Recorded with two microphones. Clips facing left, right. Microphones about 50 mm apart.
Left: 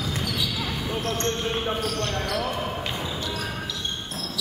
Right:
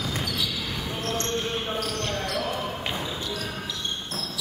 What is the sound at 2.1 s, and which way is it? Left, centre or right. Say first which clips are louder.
Basketball bounce: left 2 dB; centre.